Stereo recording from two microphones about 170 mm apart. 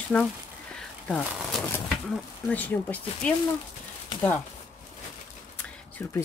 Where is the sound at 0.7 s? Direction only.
5° left (ahead or behind).